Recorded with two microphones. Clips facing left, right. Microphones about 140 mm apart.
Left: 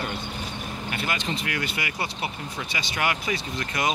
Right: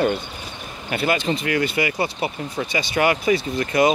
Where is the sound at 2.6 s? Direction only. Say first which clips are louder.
Right 10 dB; 40° right (ahead or behind).